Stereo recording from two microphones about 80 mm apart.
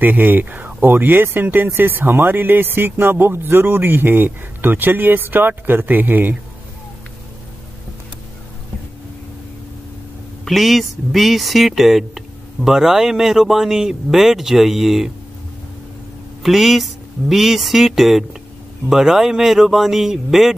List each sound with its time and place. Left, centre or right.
0.0 s speech: right
10.4 s speech: centre
16.4 s speech: centre